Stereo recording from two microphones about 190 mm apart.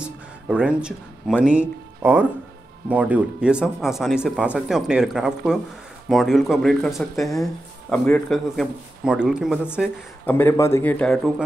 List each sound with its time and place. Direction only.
0.0 s speech: 5° right (ahead or behind)
10.2 s a man's voice: 10° left (ahead or behind)